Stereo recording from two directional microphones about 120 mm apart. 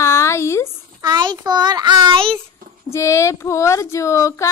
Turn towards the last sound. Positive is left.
turn(degrees=25)  # may be behind; listen again after turning